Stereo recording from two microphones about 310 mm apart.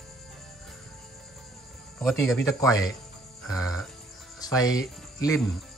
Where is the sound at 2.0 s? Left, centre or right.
Centre.